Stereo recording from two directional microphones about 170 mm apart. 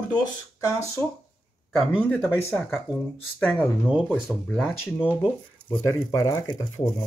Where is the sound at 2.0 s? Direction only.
10° left (ahead or behind).